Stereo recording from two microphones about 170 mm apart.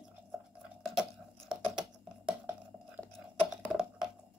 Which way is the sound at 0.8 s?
Centre (ahead or behind).